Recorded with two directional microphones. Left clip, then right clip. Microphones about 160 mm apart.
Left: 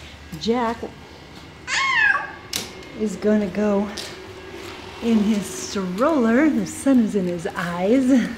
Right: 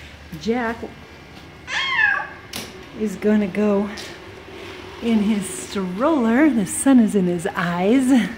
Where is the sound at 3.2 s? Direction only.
20° right (ahead or behind).